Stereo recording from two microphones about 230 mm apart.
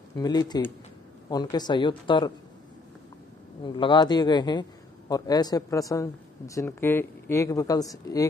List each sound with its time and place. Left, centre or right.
0.1 s a man's voice: centre
3.6 s a man's voice: centre